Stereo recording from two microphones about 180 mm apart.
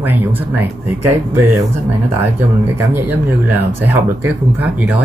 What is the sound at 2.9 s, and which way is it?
Speech, 10° right (ahead or behind).